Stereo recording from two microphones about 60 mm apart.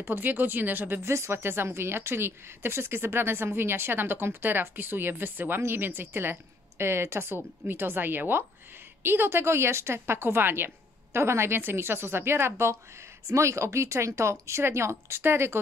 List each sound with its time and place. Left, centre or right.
0.0 s speech: right
1.0 s speech: right